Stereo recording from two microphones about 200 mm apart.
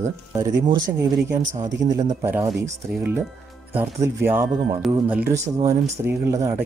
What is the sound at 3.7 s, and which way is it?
Speech, 10° right (ahead or behind).